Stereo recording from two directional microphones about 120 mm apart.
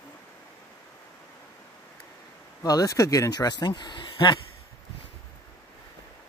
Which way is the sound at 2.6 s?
30° left (ahead or behind).